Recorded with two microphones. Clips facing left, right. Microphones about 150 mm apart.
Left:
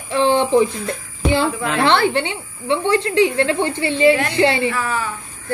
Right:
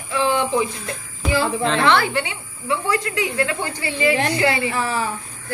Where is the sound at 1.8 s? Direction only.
30° left (ahead or behind).